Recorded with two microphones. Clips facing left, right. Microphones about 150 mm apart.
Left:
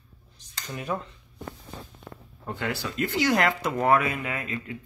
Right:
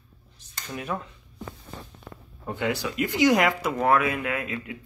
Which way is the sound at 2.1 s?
40° left (ahead or behind).